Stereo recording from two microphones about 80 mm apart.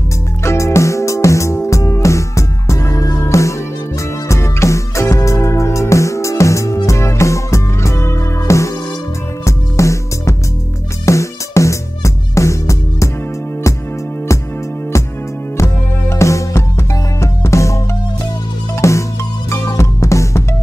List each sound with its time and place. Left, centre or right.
0.4 s music: left
15.5 s music: left
18.8 s music: left